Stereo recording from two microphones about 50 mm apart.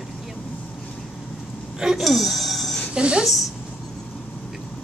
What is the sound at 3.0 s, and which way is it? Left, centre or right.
Speech, right.